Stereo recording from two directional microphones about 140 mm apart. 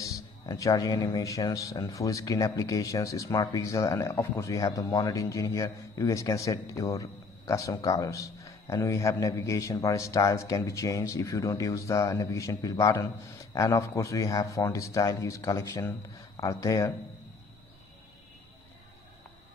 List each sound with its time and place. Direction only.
0.0 s speech: 25° left (ahead or behind)